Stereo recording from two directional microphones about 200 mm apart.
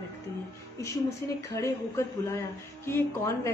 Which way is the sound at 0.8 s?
15° left (ahead or behind).